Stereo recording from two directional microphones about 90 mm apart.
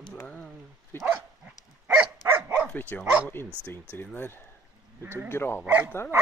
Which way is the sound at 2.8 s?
25° left (ahead or behind).